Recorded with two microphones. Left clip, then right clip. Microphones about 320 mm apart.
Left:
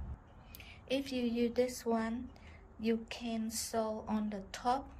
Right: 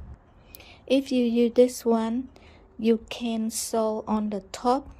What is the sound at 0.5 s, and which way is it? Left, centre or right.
A woman's voice, centre.